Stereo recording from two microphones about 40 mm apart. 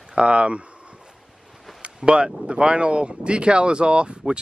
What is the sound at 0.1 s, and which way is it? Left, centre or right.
Speech, right.